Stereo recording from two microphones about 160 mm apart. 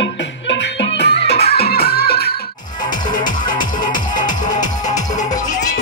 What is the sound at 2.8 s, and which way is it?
Music, 25° left (ahead or behind).